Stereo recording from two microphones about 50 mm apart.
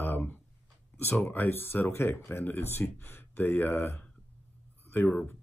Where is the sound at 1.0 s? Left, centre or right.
Left.